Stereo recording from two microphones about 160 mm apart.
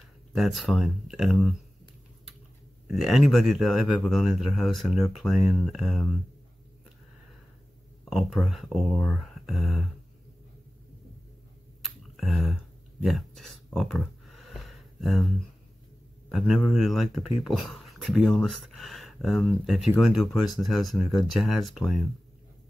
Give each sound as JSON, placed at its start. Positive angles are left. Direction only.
{"t": 0.3, "sound": "speech", "side_deg": 0}
{"t": 2.9, "sound": "speech", "side_deg": 0}
{"t": 8.0, "sound": "speech", "side_deg": 0}
{"t": 11.8, "sound": "a sound", "side_deg": 0}
{"t": 16.3, "sound": "a man's voice", "side_deg": 0}